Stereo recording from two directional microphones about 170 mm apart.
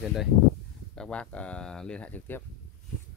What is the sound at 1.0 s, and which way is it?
Speech, 5° left (ahead or behind).